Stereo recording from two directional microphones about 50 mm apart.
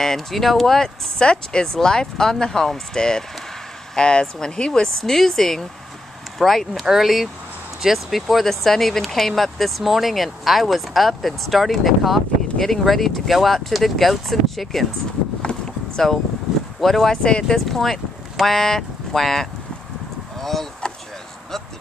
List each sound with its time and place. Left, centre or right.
0.0 s speech: centre
15.5 s a sound: left
16.0 s speech: centre